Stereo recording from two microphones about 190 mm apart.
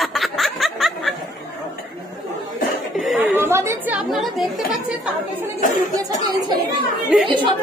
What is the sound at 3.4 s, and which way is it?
A woman's voice, 15° right (ahead or behind).